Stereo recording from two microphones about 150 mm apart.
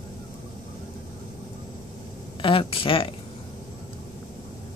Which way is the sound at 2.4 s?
35° left (ahead or behind).